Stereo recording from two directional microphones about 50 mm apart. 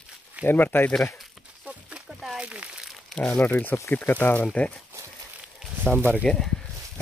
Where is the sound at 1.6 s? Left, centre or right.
Right.